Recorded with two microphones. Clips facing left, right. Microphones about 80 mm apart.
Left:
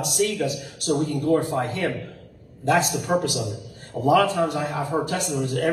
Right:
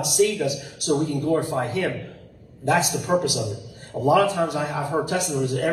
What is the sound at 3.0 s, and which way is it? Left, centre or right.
Speech, centre.